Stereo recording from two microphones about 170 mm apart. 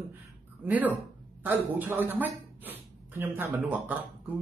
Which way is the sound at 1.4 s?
10° right (ahead or behind).